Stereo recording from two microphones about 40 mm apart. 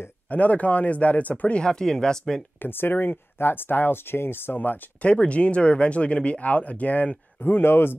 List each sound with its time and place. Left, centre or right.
0.3 s speech: left
1.6 s speech: centre
2.6 s speech: left
4.6 s speech: left
5.0 s speech: left
7.4 s speech: left